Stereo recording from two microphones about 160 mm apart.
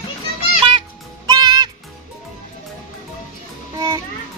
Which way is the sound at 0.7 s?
30° right (ahead or behind).